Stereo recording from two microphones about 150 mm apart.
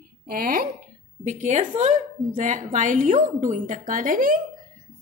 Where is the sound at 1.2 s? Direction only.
55° right (ahead or behind).